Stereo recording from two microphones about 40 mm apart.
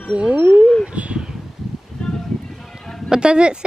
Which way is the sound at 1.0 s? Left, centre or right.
Right.